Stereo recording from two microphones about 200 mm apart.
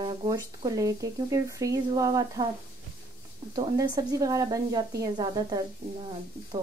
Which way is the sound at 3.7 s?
20° right (ahead or behind).